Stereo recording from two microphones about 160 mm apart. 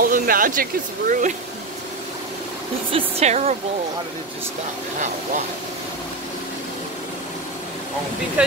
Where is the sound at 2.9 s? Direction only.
45° right (ahead or behind).